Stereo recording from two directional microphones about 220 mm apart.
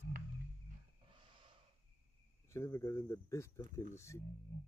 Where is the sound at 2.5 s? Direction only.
15° left (ahead or behind).